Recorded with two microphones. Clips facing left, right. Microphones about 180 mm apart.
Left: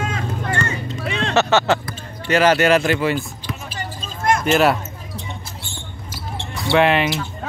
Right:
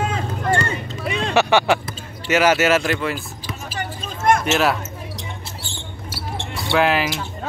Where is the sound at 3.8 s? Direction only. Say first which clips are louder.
Right 2 dB; 60° right (ahead or behind).